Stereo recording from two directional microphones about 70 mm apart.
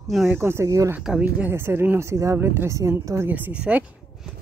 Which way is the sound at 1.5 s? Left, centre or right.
Right.